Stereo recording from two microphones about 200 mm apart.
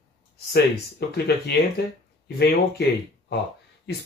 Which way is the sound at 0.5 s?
55° left (ahead or behind).